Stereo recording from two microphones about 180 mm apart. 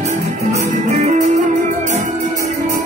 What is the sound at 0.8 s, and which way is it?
Music, 40° right (ahead or behind).